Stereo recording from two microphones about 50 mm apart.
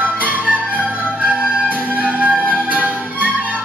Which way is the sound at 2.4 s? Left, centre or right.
Right.